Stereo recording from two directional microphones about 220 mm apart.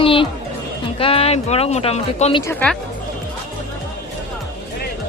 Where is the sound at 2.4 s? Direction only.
10° left (ahead or behind).